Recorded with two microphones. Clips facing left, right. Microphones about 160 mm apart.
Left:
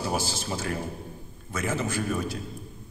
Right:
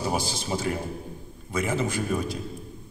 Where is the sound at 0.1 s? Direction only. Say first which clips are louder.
Right 2 dB; 15° right (ahead or behind).